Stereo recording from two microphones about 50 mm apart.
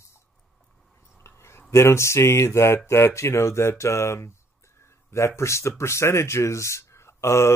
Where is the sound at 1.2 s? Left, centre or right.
Left.